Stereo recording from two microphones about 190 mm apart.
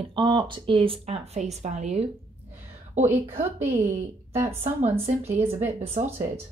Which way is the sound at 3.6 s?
40° right (ahead or behind).